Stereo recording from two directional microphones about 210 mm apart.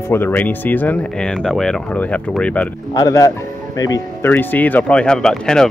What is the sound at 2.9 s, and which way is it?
Speech, 15° left (ahead or behind).